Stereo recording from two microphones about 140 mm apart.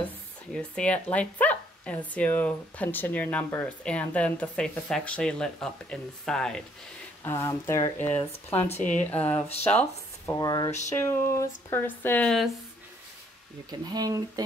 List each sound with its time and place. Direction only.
0.5 s speech: 5° left (ahead or behind)
7.2 s speech: 20° left (ahead or behind)
8.6 s speech: 55° left (ahead or behind)
9.1 s speech: 10° left (ahead or behind)
10.4 s speech: 25° left (ahead or behind)
10.7 s a sound: 55° left (ahead or behind)
11.0 s speech: 20° left (ahead or behind)
13.7 s speech: 30° right (ahead or behind)